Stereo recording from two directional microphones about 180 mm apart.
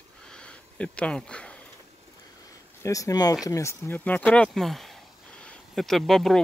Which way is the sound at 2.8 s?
20° left (ahead or behind).